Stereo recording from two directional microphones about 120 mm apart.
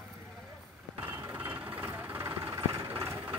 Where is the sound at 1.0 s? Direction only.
25° right (ahead or behind).